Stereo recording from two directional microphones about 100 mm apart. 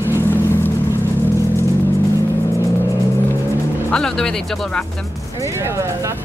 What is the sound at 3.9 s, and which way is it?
Speech, 5° left (ahead or behind).